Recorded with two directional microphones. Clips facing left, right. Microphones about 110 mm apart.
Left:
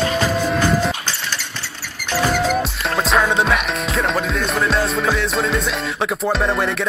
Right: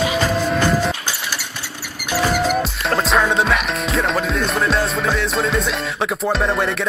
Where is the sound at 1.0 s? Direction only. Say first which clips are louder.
Even; 10° right (ahead or behind).